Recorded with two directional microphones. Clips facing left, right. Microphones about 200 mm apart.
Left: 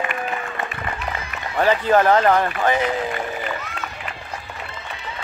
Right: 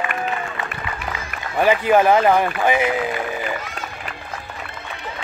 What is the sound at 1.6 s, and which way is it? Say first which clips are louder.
Speech: right 1 dB; 10° right (ahead or behind).